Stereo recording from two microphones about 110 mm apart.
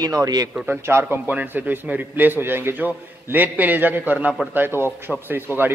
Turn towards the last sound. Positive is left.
turn(degrees=-20)  # may be behind; listen again after turning